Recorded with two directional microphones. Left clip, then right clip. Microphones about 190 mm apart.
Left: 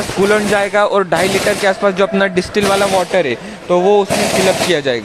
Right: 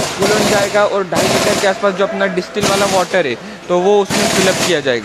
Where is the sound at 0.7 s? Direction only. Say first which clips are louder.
Left 1 dB; 40° left (ahead or behind).